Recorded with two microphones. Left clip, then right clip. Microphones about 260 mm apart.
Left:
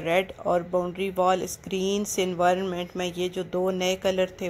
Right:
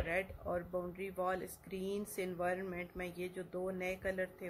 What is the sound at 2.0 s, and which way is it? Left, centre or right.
Speech, centre.